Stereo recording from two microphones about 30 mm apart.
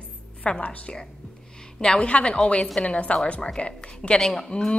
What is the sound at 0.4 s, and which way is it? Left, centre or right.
A woman's voice, left.